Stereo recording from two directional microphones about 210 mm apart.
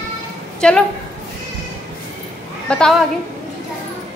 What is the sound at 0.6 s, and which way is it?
Speech, 5° left (ahead or behind).